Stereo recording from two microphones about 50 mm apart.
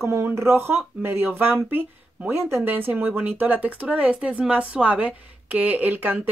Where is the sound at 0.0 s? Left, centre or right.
Right.